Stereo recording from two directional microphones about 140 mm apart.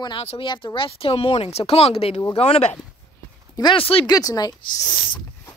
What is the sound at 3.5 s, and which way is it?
Speech, 35° left (ahead or behind).